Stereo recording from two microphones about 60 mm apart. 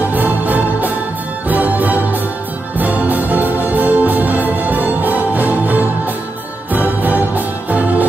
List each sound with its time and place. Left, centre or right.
0.1 s music: right